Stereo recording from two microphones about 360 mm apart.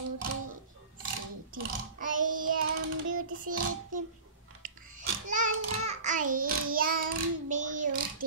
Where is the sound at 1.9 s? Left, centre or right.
Right.